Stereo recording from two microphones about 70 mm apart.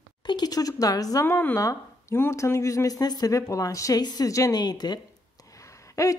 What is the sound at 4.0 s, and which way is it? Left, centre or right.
Speech, left.